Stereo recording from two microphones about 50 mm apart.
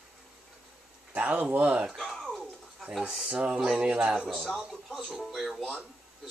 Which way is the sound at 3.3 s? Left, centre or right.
Right.